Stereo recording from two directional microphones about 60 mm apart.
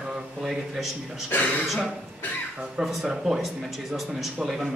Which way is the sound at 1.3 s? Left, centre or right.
Left.